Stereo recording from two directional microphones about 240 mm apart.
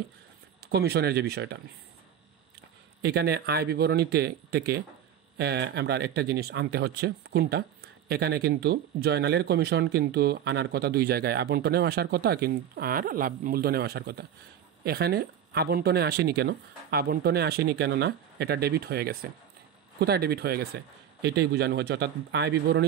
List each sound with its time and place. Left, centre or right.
0.7 s a man's voice: right
3.0 s a man's voice: right